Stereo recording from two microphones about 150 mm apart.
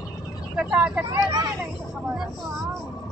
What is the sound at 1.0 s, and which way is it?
Speech, 25° right (ahead or behind).